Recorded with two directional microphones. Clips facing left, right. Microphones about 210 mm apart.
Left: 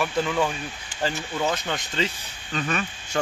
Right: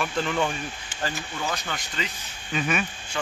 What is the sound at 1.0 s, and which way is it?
Speech, 20° left (ahead or behind).